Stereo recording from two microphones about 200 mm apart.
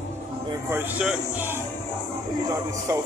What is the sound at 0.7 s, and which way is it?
Speech, 10° right (ahead or behind).